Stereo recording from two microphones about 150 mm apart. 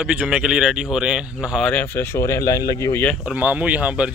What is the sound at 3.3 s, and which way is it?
Speech, 10° right (ahead or behind).